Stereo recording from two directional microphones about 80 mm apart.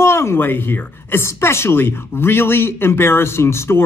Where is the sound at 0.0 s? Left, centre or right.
Left.